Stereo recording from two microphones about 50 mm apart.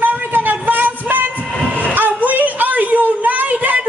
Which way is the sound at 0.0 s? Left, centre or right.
Right.